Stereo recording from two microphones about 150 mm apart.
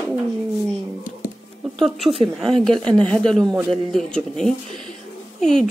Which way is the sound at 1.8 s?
Centre (ahead or behind).